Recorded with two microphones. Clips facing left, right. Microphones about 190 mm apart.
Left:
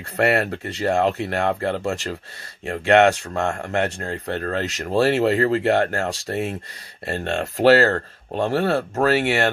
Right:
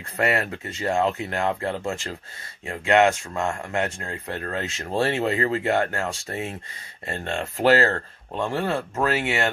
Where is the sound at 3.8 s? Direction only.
35° left (ahead or behind).